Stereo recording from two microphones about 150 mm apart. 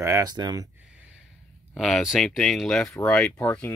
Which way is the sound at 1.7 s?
Centre (ahead or behind).